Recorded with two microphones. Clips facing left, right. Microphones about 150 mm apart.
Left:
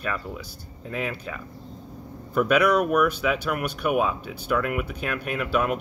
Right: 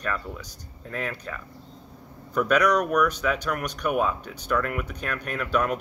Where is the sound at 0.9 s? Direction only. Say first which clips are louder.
Left 2 dB; 10° left (ahead or behind).